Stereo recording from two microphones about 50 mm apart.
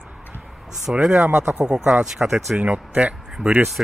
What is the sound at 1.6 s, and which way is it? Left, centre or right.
Speech, centre.